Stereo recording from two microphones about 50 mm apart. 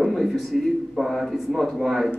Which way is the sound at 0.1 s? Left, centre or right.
Centre.